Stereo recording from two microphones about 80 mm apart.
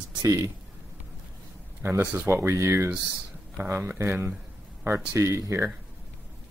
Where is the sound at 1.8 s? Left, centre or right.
Right.